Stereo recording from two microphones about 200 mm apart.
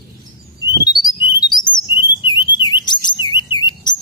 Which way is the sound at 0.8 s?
20° left (ahead or behind).